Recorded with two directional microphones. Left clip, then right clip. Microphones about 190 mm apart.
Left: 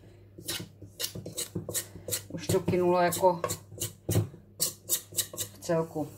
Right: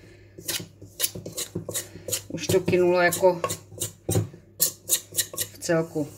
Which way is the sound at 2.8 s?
35° right (ahead or behind).